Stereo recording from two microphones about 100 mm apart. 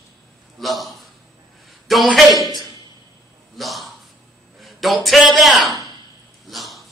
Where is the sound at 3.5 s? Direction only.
Centre (ahead or behind).